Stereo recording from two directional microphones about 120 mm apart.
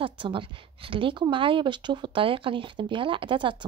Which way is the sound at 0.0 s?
45° right (ahead or behind).